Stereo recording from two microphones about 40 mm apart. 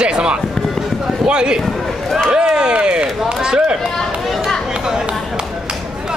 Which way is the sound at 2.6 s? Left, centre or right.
Right.